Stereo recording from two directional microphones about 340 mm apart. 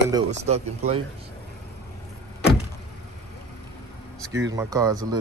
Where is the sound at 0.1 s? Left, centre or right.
Centre.